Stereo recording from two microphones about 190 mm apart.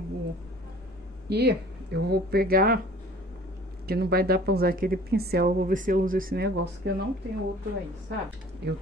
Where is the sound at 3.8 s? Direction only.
55° right (ahead or behind).